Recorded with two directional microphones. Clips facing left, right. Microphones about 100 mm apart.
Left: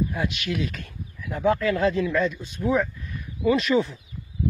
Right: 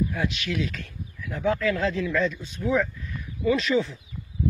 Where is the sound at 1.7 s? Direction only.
20° left (ahead or behind).